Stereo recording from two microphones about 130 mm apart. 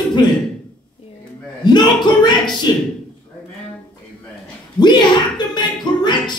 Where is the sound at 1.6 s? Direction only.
35° left (ahead or behind).